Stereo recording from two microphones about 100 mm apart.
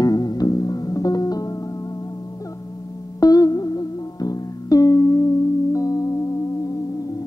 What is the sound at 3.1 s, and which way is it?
Music, 35° left (ahead or behind).